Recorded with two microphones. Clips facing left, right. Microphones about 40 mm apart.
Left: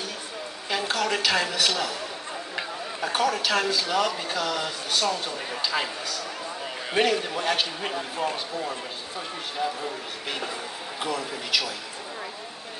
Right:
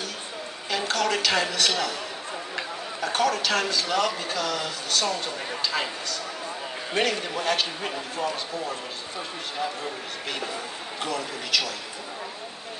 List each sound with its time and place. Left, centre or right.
0.7 s a man's voice: centre
9.6 s a man's voice: centre
11.0 s a man's voice: centre